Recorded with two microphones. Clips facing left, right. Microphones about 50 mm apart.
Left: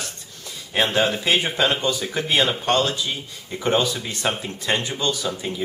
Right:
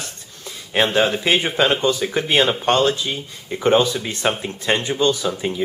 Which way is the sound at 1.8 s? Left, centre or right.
Right.